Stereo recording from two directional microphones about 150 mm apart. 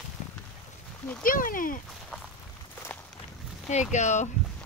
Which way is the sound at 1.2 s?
65° left (ahead or behind).